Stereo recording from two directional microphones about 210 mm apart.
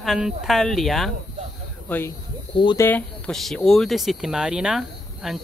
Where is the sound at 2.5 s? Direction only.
20° left (ahead or behind).